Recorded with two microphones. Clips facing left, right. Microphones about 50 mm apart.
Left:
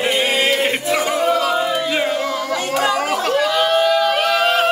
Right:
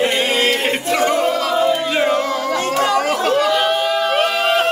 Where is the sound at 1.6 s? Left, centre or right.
Centre.